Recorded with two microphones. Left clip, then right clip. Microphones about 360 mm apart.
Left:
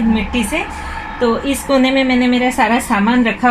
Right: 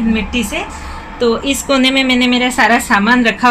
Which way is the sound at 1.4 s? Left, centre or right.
Right.